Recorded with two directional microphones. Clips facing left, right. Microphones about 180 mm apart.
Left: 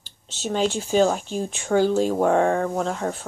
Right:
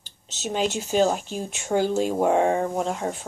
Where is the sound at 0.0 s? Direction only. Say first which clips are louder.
Left 2 dB; 45° right (ahead or behind).